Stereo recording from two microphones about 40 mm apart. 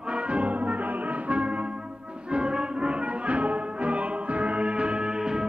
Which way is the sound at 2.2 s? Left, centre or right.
Right.